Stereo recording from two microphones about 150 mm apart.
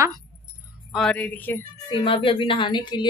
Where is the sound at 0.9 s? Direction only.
5° left (ahead or behind).